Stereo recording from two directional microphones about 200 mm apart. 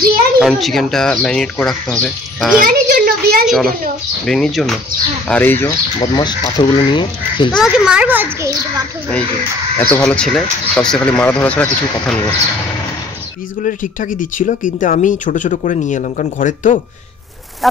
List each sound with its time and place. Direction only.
0.4 s speech: centre (ahead or behind)
2.6 s a child's voice: 45° right (ahead or behind)
3.4 s speech: centre (ahead or behind)
5.9 s speech: 20° left (ahead or behind)
7.5 s a child's voice: 5° right (ahead or behind)
9.8 s speech: 5° left (ahead or behind)
13.6 s speech: 40° left (ahead or behind)